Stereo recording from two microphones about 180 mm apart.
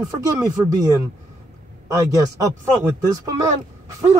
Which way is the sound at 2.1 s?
20° right (ahead or behind).